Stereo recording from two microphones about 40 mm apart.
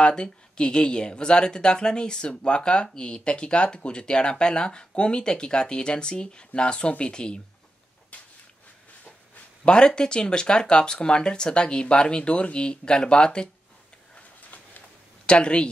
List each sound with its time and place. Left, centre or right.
0.0 s speech: left
8.1 s a sound: left
9.7 s speech: left
15.2 s speech: left